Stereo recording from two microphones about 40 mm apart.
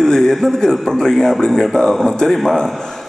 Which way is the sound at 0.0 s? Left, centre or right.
Centre.